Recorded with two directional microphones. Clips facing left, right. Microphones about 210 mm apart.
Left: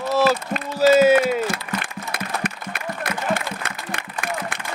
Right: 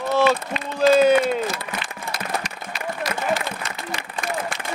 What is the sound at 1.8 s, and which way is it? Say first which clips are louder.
Applause: left 1 dB; 55° left (ahead or behind).